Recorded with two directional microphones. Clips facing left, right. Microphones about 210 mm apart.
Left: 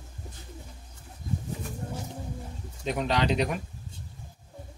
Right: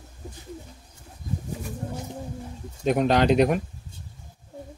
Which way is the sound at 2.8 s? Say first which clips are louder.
Right 7 dB; 50° right (ahead or behind).